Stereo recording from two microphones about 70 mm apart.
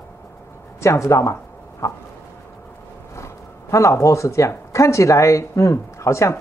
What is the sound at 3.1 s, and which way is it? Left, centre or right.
Speech, left.